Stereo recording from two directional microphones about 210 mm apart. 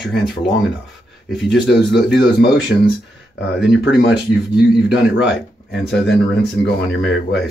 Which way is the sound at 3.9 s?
Centre (ahead or behind).